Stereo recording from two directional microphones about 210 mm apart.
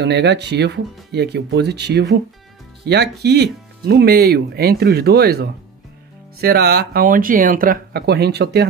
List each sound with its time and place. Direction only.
0.0 s speech: 55° right (ahead or behind)